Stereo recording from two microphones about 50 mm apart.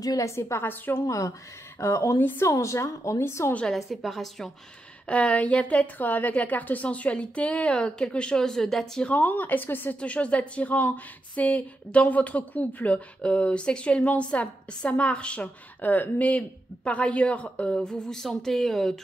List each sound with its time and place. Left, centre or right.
0.2 s a woman's voice: left
1.0 s a woman's voice: left
2.1 s a woman's voice: left
2.4 s a woman's voice: left
3.7 s a woman's voice: centre
5.0 s speech: left; by 9.0 s centre
9.1 s a woman's voice: left
9.9 s a woman's voice: left; by 18.9 s centre